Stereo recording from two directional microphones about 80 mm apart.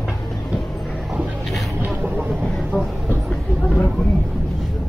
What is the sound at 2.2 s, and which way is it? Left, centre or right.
Vehicle, centre.